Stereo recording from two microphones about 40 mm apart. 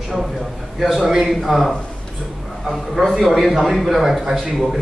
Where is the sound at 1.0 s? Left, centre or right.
Centre.